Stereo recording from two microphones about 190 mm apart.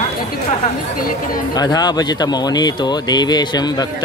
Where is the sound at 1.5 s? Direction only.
20° left (ahead or behind).